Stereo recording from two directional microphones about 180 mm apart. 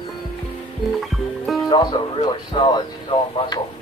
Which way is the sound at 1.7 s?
25° left (ahead or behind).